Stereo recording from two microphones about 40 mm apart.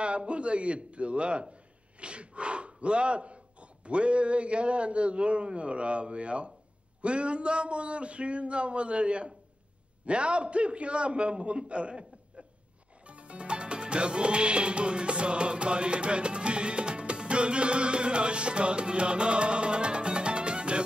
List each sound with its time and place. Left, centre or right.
0.0 s a man's voice: right
13.0 s music: right